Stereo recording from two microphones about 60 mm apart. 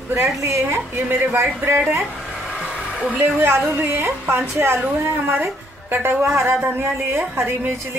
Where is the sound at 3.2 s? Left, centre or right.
Right.